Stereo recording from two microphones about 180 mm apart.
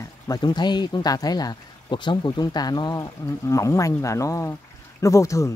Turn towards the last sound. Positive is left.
turn(degrees=15)  # may be behind; listen again after turning